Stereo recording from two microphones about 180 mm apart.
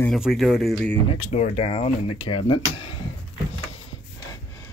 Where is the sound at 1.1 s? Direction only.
40° left (ahead or behind).